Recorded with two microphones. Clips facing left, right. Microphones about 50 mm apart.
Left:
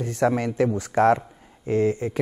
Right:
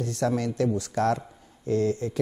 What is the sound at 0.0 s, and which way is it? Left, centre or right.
A man's voice, left.